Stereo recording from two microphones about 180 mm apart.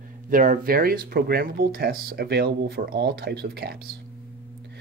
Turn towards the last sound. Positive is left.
turn(degrees=-60)  # may be behind; listen again after turning